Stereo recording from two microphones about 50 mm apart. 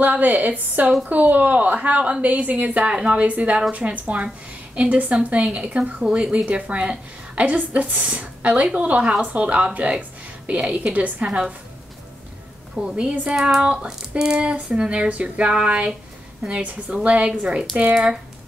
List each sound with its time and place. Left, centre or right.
0.0 s a woman's voice: right
12.9 s a woman's voice: right